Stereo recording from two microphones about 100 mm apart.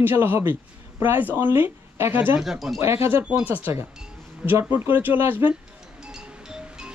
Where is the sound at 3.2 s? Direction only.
15° right (ahead or behind).